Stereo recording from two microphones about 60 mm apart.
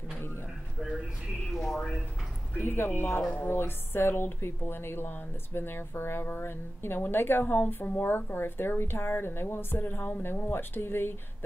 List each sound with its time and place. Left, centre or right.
0.7 s a sound: centre
1.5 s speech: centre
2.6 s speech: left
3.2 s a woman's voice: centre
3.4 s speech: left